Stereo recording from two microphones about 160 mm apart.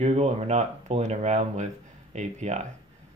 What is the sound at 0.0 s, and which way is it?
Speech, 40° right (ahead or behind).